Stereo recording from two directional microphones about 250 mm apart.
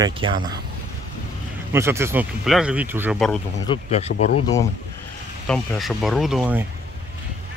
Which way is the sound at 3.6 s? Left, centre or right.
Left.